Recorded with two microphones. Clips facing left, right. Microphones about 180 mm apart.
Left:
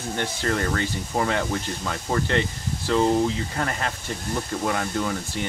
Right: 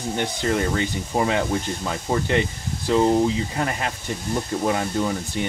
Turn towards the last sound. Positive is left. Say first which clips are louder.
# right 3 dB
turn(degrees=-20)  # may be behind; listen again after turning